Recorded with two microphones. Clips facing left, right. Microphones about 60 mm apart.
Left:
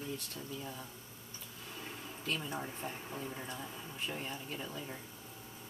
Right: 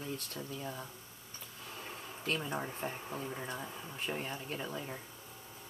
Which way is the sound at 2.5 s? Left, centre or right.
Right.